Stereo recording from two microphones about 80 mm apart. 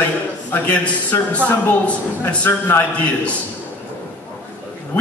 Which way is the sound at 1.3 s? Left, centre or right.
Centre.